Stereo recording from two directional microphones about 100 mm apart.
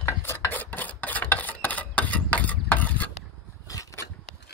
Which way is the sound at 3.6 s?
35° left (ahead or behind).